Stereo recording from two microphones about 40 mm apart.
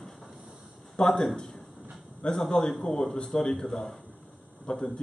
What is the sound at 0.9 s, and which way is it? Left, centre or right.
A man's voice, centre.